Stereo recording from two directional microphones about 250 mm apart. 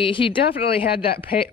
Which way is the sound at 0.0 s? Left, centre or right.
Left.